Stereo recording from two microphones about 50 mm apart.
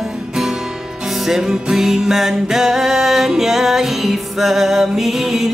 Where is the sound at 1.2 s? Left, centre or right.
Centre.